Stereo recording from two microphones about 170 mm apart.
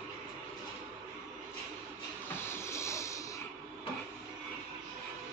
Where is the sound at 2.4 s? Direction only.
15° left (ahead or behind).